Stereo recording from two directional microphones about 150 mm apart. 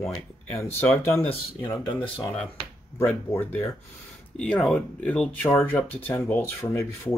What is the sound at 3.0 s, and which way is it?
Speech, 10° left (ahead or behind).